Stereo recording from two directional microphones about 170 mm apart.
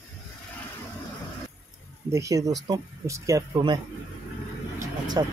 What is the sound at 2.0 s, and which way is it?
Speech, 20° right (ahead or behind).